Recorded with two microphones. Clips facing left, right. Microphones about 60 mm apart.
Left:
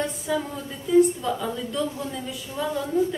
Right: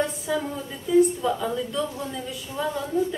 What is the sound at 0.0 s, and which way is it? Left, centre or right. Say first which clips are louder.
A woman's voice: right 1 dB; centre.